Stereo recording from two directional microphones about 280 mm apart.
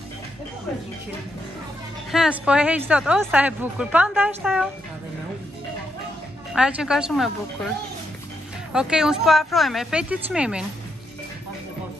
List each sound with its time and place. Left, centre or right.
2.0 s speech: centre
6.5 s speech: centre
8.7 s speech: centre